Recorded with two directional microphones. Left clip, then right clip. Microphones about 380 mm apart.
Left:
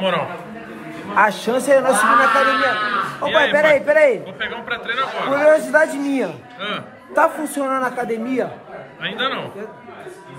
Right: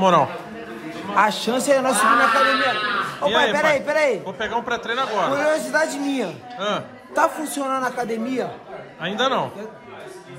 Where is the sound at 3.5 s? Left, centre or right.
Centre.